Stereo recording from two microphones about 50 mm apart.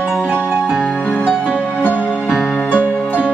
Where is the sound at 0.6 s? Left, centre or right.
Centre.